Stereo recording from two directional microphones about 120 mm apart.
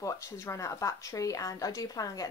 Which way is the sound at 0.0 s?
25° left (ahead or behind).